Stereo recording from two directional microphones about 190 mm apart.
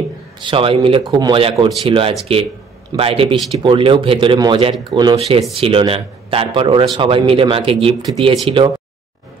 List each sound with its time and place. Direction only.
0.4 s speech: 25° right (ahead or behind)